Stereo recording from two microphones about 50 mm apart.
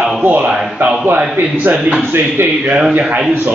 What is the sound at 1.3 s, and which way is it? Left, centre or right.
Speech, right.